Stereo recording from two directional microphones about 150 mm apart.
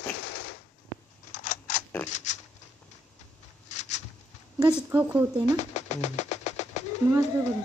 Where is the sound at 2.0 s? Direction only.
55° left (ahead or behind).